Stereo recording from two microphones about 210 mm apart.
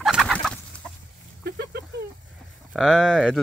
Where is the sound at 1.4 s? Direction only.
50° right (ahead or behind).